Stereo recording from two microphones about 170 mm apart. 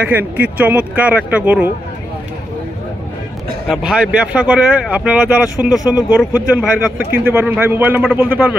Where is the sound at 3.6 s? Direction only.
5° right (ahead or behind).